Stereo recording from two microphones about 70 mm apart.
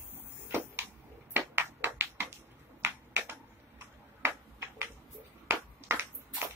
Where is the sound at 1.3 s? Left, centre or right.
Right.